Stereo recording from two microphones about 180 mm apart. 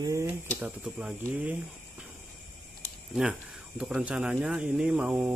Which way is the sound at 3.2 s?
5° right (ahead or behind).